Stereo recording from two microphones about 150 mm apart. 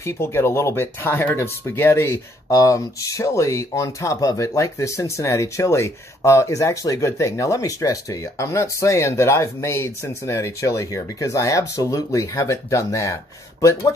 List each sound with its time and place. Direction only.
0.0 s speech: 15° left (ahead or behind)